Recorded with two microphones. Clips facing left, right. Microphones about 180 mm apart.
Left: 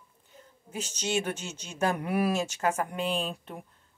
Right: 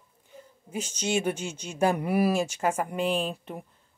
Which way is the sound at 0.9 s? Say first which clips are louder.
Right 3 dB; 10° right (ahead or behind).